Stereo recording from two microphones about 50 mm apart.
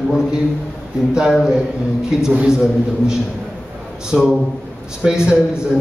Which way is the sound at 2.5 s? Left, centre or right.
Centre.